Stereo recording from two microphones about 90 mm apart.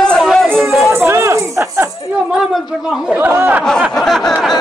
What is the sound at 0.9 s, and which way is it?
Music, 30° right (ahead or behind).